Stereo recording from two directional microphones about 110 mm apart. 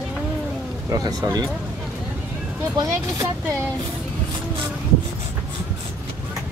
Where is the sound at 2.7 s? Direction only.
30° right (ahead or behind).